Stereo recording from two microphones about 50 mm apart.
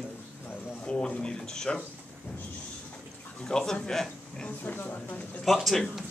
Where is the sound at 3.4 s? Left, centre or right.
Centre.